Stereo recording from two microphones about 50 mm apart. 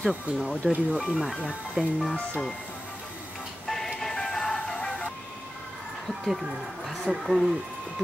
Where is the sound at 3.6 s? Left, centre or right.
Centre.